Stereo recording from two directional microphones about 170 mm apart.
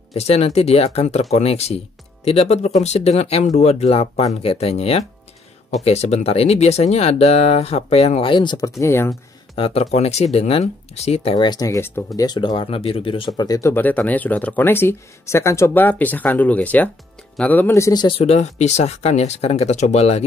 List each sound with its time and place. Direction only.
0.1 s speech: 40° left (ahead or behind); by 9.1 s 15° left (ahead or behind)
9.6 s speech: 35° left (ahead or behind); by 12.0 s 15° left (ahead or behind)
12.2 s speech: 25° left (ahead or behind)
13.3 s speech: 20° left (ahead or behind); by 20.2 s 40° left (ahead or behind)